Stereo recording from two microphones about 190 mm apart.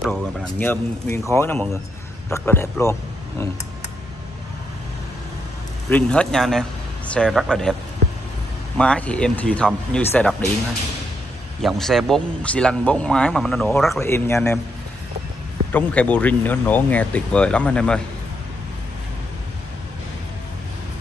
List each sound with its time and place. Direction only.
0.0 s speech: 5° left (ahead or behind)
5.9 s speech: 5° left (ahead or behind)
8.7 s speech: 5° left (ahead or behind)
11.6 s speech: centre (ahead or behind)
14.0 s speech: 15° left (ahead or behind)
15.7 s speech: 5° left (ahead or behind)